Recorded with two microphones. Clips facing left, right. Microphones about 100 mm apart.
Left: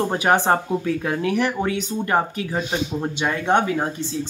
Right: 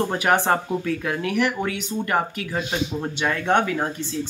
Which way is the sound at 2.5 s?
15° left (ahead or behind).